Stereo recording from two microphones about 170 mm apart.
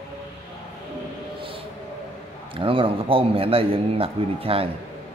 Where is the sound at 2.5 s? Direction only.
30° right (ahead or behind).